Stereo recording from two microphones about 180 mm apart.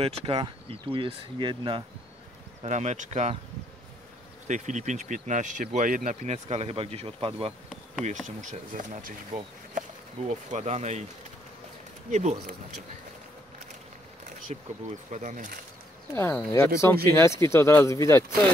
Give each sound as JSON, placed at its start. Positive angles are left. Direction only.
{"t": 0.0, "sound": "speech", "side_deg": -30}
{"t": 2.6, "sound": "speech", "side_deg": -40}
{"t": 4.5, "sound": "speech", "side_deg": -45}
{"t": 8.4, "sound": "speech", "side_deg": -45}
{"t": 12.1, "sound": "speech", "side_deg": -40}
{"t": 14.5, "sound": "speech", "side_deg": -40}
{"t": 16.2, "sound": "speech", "side_deg": 10}